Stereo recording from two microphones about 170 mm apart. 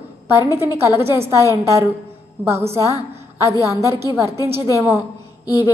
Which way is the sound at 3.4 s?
20° left (ahead or behind).